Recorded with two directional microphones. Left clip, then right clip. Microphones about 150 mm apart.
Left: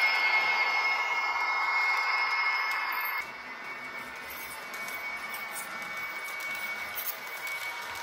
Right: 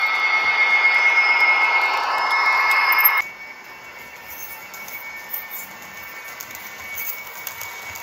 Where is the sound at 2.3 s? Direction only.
70° right (ahead or behind); by 3.2 s 90° right.